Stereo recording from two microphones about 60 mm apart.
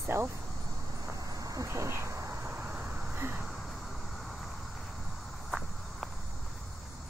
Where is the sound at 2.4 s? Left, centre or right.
Right.